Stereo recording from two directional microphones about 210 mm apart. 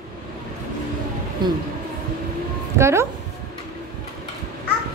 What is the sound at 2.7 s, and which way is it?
Speech, 15° right (ahead or behind).